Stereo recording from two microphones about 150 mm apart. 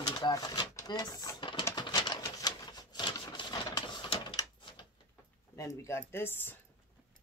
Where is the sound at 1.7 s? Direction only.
30° left (ahead or behind).